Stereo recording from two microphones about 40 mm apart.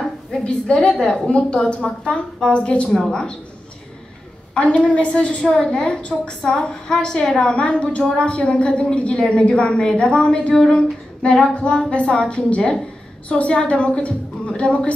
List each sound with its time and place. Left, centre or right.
0.4 s a woman's voice: left
4.6 s a woman's voice: left
6.9 s speech: centre
7.3 s a woman's voice: left
10.5 s a woman's voice: centre